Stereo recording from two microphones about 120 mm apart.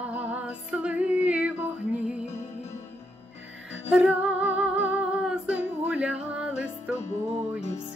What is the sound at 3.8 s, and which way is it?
Female singing, 10° right (ahead or behind).